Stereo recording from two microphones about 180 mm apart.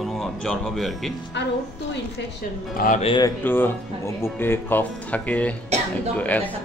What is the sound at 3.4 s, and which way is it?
Speech, 10° left (ahead or behind).